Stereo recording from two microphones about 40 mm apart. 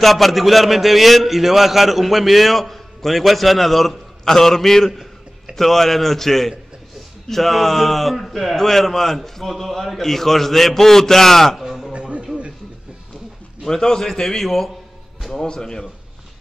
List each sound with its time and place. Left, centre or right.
0.0 s a man's voice: centre
11.5 s music: centre
11.9 s music: right
13.7 s a man's voice: centre
15.4 s a man's voice: centre